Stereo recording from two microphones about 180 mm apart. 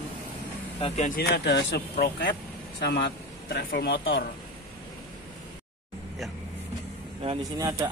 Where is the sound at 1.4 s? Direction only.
70° left (ahead or behind).